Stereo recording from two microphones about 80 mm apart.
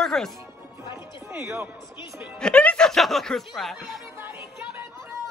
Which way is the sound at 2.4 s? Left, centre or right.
Centre.